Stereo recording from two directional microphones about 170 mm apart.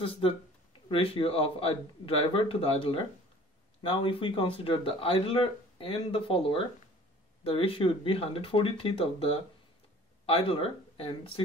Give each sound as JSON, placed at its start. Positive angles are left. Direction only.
{"t": 0.8, "sound": "speech", "side_deg": 30}